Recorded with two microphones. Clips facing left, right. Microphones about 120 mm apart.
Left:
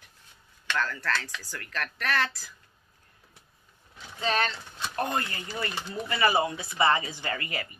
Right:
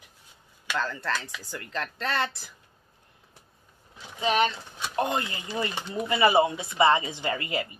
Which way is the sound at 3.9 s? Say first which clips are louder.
Right 3 dB; 15° right (ahead or behind).